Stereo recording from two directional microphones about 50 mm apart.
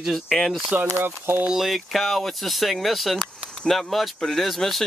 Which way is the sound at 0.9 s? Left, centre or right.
Right.